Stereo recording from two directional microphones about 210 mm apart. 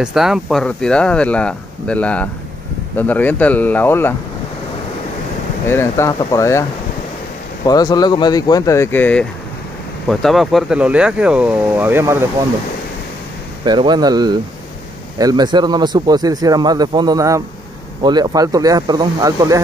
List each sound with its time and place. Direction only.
0.0 s speech: centre (ahead or behind)
5.7 s speech: 10° left (ahead or behind)
7.6 s speech: 20° left (ahead or behind); by 12.3 s 10° right (ahead or behind)
13.7 s speech: 20° right (ahead or behind)